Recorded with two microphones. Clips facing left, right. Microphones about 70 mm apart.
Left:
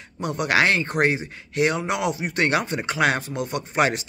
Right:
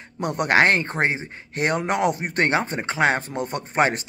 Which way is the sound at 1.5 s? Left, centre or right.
Right.